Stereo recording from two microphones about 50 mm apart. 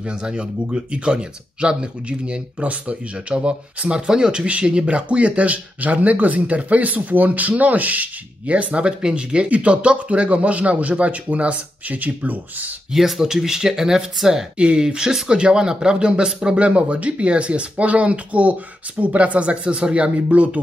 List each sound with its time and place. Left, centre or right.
0.0 s speech: centre
12.9 s speech: centre
14.6 s speech: right